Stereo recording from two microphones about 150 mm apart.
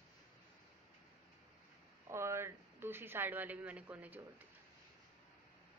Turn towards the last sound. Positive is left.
turn(degrees=-10)  # may be behind; listen again after turning